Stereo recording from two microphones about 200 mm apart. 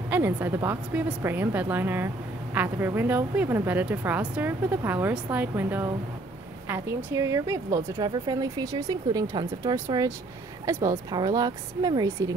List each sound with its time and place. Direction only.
0.1 s speech: 10° right (ahead or behind)